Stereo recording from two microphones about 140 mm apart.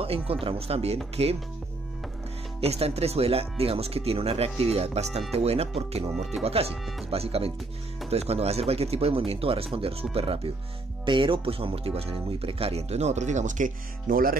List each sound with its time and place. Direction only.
0.0 s speech: 45° right (ahead or behind)
2.6 s speech: 45° right (ahead or behind); by 14.3 s 90° right